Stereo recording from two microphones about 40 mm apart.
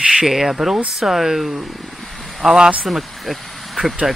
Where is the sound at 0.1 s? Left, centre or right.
Centre.